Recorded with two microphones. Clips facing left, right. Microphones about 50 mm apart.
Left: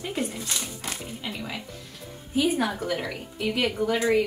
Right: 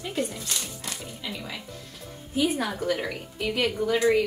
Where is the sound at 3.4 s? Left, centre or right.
Left.